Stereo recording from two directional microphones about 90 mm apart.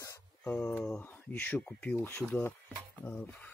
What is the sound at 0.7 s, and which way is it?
Speech, 10° left (ahead or behind).